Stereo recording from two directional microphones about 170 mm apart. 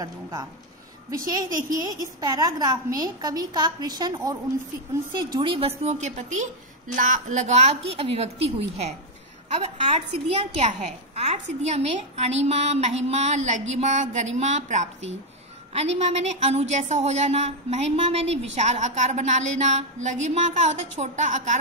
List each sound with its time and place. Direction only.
0.0 s a woman's voice: 20° right (ahead or behind); by 21.5 s 45° right (ahead or behind)